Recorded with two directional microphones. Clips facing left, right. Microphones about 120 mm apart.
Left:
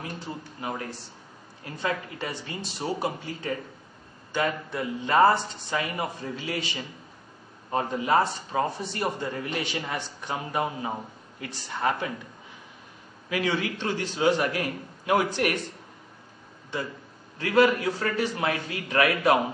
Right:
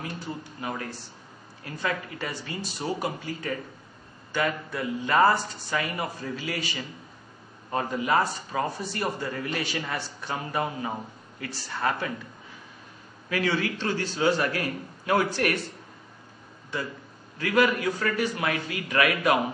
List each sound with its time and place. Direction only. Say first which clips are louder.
0.2 s a man's voice: right 1 dB; 25° left (ahead or behind)
13.3 s a man's voice: right 1 dB; 20° left (ahead or behind)
16.7 s a man's voice: even; 25° left (ahead or behind)